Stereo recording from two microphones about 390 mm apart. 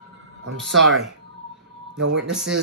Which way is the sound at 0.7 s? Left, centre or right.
Right.